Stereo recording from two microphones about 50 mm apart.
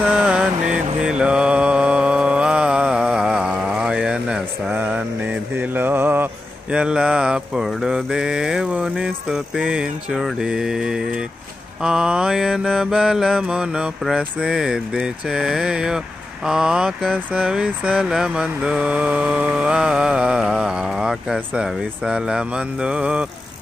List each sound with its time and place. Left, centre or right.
0.1 s mantra: centre
4.6 s mantra: right
5.7 s mantra: right
6.7 s mantra: centre
9.6 s a sound: centre
10.4 s mantra: centre